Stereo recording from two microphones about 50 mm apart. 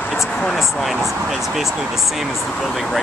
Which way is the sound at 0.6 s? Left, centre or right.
Centre.